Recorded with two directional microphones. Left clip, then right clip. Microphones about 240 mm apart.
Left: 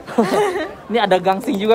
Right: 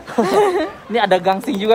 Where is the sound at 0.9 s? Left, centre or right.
Centre.